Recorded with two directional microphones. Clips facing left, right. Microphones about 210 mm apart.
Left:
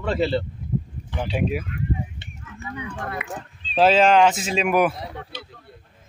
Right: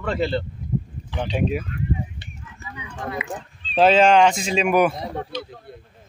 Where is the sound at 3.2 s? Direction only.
55° left (ahead or behind).